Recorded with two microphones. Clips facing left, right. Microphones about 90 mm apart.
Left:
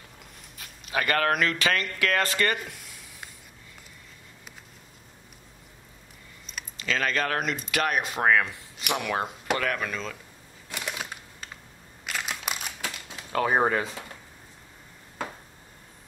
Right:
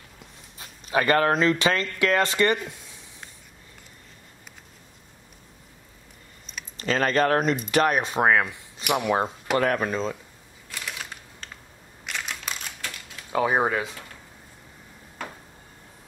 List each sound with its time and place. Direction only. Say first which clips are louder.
0.6 s speech: right 5 dB; 30° right (ahead or behind)
6.8 s speech: right 5 dB; 40° right (ahead or behind)
8.2 s speech: right 1 dB; 15° right (ahead or behind)
9.6 s speech: right 6 dB; 35° right (ahead or behind)
10.7 s shuffling cards: left 2 dB; 20° left (ahead or behind)
12.1 s crumpling: left 1 dB; 5° left (ahead or behind)
13.3 s speech: right 1 dB; 10° right (ahead or behind)